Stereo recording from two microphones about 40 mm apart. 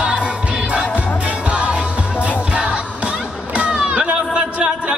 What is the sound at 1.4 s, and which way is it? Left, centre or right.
Music, right.